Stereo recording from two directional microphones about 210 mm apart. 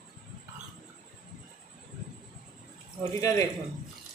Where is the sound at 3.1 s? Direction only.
15° left (ahead or behind).